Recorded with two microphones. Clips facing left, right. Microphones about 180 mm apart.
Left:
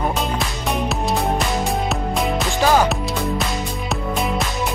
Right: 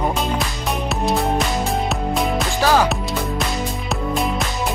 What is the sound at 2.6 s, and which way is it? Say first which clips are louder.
Music: left 1 dB; 15° left (ahead or behind).